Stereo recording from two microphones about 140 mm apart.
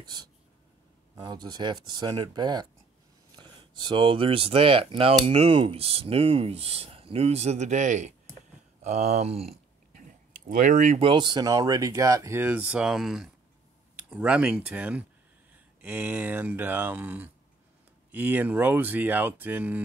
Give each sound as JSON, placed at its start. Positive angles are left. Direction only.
{"t": 0.0, "sound": "speech", "side_deg": -30}
{"t": 8.8, "sound": "a sound", "side_deg": -50}
{"t": 10.3, "sound": "speech", "side_deg": -75}
{"t": 11.0, "sound": "speech", "side_deg": -35}